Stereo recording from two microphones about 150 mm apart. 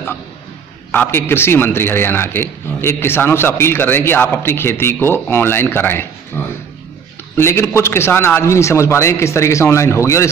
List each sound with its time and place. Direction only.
0.9 s a man's voice: 15° left (ahead or behind)
6.4 s a sound: 15° left (ahead or behind)
7.3 s a man's voice: 15° left (ahead or behind)